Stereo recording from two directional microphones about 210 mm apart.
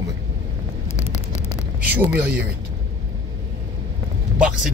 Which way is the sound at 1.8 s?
10° right (ahead or behind).